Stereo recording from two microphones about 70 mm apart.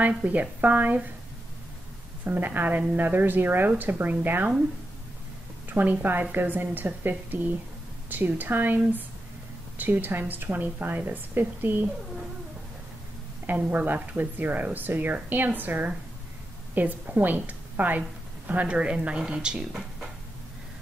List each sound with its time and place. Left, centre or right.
0.2 s speech: right
2.2 s speech: right
5.7 s speech: right
13.5 s a woman's voice: right; by 20.1 s centre